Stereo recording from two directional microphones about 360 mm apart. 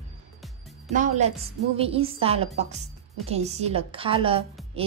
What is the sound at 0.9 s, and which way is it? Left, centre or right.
A woman's voice, centre.